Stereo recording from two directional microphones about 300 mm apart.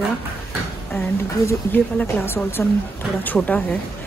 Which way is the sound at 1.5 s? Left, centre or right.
Centre.